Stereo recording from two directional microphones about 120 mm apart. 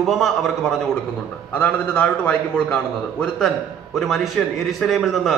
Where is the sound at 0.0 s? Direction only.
Centre (ahead or behind).